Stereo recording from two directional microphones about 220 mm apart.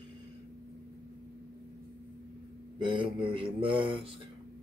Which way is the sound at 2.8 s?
20° right (ahead or behind).